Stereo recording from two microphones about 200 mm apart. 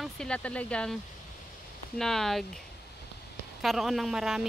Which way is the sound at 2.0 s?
Centre (ahead or behind).